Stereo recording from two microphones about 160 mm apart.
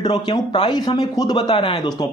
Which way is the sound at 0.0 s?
30° left (ahead or behind).